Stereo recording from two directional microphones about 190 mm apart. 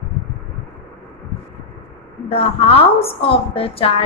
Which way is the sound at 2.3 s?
30° left (ahead or behind).